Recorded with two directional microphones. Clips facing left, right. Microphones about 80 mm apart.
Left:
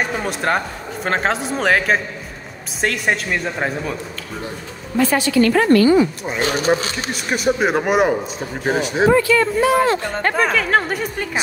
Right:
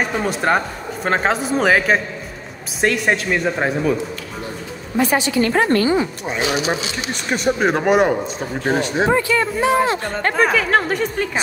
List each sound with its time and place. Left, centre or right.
0.2 s a man's voice: centre
4.9 s a woman's voice: right
7.1 s a man's voice: centre
9.1 s a woman's voice: right
10.3 s a man's voice: centre